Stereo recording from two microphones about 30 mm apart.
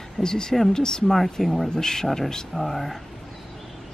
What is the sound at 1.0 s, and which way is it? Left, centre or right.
Speech, centre.